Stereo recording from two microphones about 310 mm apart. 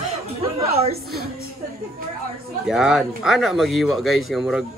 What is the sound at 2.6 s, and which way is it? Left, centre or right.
Speech, centre.